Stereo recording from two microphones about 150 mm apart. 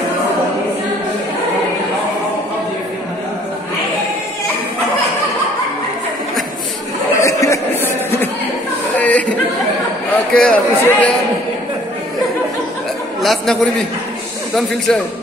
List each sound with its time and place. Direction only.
7.2 s a sound: 20° left (ahead or behind)
8.9 s chatter: 10° left (ahead or behind)
10.1 s a man's voice: 10° left (ahead or behind)
13.2 s a man's voice: centre (ahead or behind)